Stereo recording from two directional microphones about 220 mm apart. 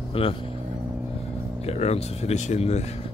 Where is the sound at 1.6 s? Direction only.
30° left (ahead or behind).